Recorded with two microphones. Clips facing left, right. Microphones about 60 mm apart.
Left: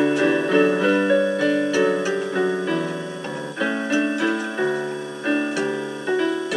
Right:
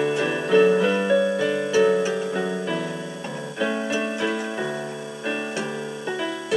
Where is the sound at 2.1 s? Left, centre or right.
Centre.